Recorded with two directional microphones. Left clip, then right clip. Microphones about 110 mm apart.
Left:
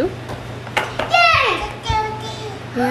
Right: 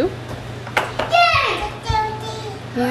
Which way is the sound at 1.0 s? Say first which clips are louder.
Left 2 dB; 15° left (ahead or behind).